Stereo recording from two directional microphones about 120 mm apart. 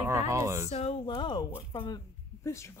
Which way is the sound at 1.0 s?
40° left (ahead or behind).